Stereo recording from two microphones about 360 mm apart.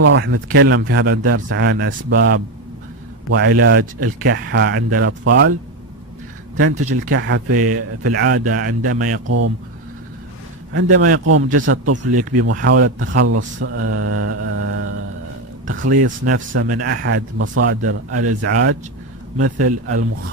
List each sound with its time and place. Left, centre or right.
0.0 s speech: right
6.5 s speech: right
6.9 s speech: right
10.7 s speech: right
15.6 s speech: right